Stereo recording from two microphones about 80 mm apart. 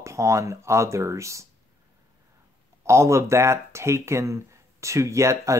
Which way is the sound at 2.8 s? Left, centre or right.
Right.